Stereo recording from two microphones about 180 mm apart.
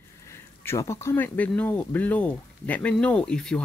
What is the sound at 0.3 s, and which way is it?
Speech, 15° left (ahead or behind).